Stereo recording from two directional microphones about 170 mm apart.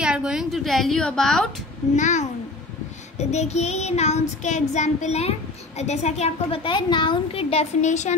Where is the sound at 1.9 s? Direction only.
45° left (ahead or behind).